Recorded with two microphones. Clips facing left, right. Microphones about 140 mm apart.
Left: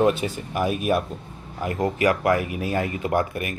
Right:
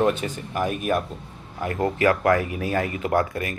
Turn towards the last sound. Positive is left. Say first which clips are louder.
# right 1 dB
turn(degrees=20)  # may be behind; listen again after turning